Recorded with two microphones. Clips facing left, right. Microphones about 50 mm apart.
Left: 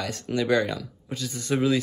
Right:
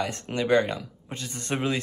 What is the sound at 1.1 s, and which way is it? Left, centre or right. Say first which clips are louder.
Speech: left 4 dB; right.